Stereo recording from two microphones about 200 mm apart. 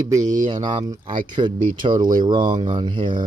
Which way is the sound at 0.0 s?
15° right (ahead or behind).